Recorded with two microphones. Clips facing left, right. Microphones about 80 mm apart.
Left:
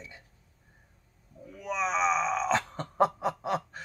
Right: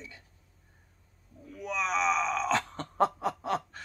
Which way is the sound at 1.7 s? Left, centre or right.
Left.